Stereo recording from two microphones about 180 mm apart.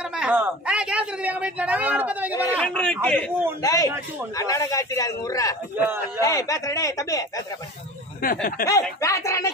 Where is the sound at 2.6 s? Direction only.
5° left (ahead or behind).